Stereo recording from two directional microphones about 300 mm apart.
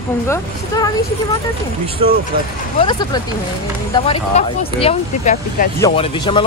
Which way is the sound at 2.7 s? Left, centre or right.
Centre.